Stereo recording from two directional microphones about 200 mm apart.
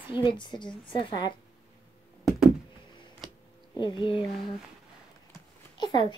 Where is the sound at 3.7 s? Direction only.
20° left (ahead or behind).